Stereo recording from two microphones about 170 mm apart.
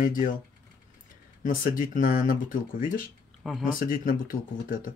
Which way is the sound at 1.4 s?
55° left (ahead or behind).